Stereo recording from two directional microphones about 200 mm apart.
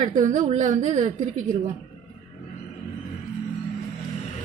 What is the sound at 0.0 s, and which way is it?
A woman's voice, 35° right (ahead or behind).